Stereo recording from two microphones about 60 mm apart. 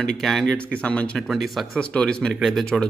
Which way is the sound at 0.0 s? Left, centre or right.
Centre.